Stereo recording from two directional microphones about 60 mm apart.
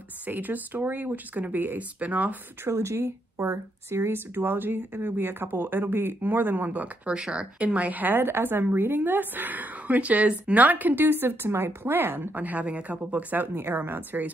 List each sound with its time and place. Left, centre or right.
0.3 s a woman's voice: right
2.6 s speech: right
4.4 s a woman's voice: right